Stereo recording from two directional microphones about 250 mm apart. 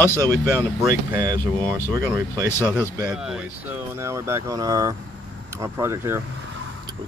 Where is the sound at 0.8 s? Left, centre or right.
Centre.